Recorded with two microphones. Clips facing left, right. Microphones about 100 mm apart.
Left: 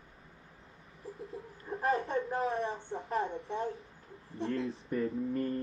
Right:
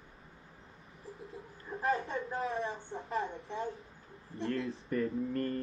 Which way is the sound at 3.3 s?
30° left (ahead or behind).